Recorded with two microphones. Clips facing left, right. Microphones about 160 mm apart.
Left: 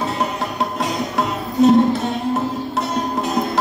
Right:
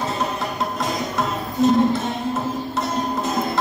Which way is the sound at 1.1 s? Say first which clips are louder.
Left 3 dB; 70° left (ahead or behind).